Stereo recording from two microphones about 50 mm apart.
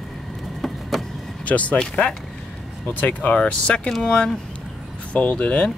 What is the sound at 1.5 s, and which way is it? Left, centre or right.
Speech, left.